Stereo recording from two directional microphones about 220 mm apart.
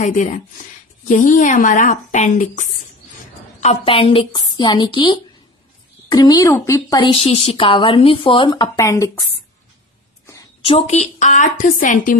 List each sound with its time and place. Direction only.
0.0 s a woman's voice: 35° left (ahead or behind); by 9.2 s 10° left (ahead or behind)
10.6 s a woman's voice: 25° left (ahead or behind)